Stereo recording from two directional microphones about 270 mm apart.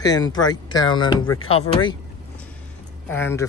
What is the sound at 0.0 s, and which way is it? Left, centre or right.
Speech, centre.